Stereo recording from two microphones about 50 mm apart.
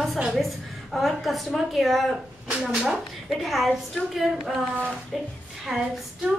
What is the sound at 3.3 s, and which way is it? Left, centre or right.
A woman's voice, centre.